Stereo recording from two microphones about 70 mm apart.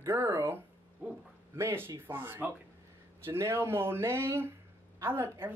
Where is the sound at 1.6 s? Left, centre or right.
Right.